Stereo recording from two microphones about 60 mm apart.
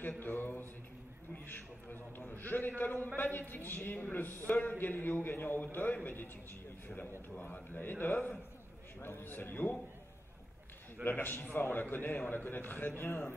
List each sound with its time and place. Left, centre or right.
0.2 s a man's voice: left
7.0 s a man's voice: left
11.1 s a man's voice: left